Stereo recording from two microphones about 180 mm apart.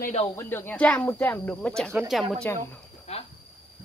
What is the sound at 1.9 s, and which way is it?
Speech, 5° right (ahead or behind).